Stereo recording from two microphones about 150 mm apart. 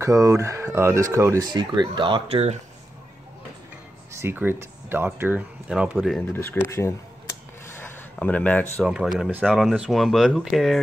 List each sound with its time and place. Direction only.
0.0 s speech: 20° right (ahead or behind)
1.5 s speech: 30° right (ahead or behind)
4.1 s speech: 15° right (ahead or behind)
6.1 s speech: 15° left (ahead or behind)
7.7 s a sound: 15° left (ahead or behind)
8.8 s speech: 5° right (ahead or behind)